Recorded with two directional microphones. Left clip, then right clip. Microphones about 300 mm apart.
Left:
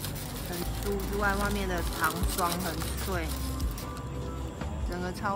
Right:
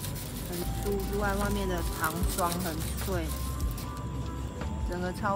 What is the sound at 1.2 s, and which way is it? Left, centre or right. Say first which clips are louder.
Speech: left 4 dB; centre.